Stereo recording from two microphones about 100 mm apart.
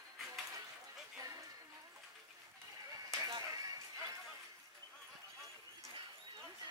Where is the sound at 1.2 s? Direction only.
35° right (ahead or behind).